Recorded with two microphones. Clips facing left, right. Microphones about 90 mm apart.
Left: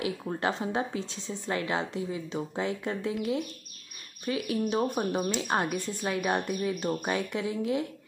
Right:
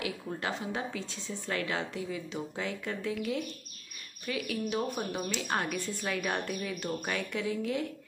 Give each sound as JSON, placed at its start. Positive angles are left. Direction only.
{"t": 0.0, "sound": "speech", "side_deg": 30}